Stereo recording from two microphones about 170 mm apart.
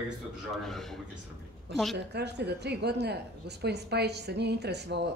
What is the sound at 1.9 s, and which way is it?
A woman's voice, 80° right.